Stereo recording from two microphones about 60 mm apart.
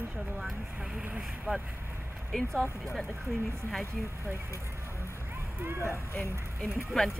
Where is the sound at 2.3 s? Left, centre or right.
Centre.